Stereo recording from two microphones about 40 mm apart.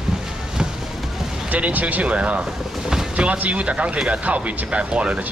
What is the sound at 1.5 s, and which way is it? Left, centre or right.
Speech, right.